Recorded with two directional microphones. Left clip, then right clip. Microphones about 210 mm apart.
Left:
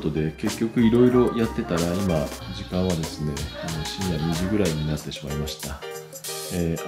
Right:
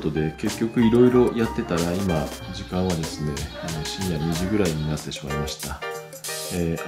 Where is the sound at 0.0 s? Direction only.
Centre (ahead or behind).